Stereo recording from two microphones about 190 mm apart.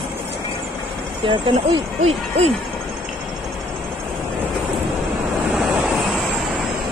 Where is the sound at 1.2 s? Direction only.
25° right (ahead or behind).